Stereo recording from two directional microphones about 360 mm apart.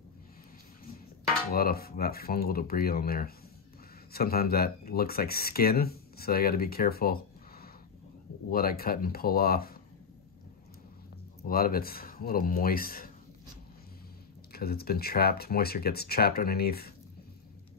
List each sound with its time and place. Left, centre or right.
1.5 s speech: left
11.4 s speech: left
14.5 s speech: left